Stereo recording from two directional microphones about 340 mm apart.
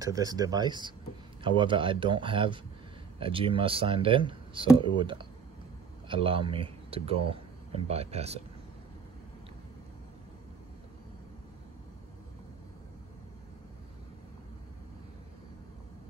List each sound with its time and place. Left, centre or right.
0.0 s speech: centre